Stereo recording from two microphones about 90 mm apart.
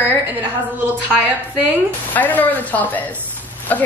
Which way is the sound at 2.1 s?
20° left (ahead or behind).